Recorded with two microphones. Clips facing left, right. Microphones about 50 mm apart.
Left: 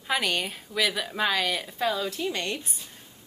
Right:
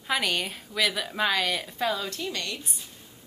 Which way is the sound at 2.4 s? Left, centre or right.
Left.